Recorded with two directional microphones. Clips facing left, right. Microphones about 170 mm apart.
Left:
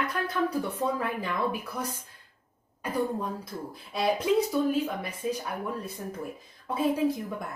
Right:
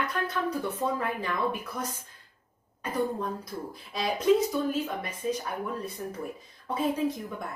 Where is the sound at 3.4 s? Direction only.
Centre (ahead or behind).